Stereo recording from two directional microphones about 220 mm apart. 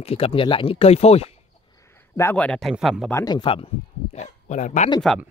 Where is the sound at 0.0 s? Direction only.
25° left (ahead or behind).